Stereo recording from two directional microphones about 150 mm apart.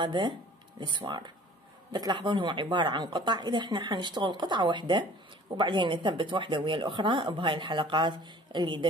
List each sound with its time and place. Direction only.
0.0 s speech: 30° right (ahead or behind)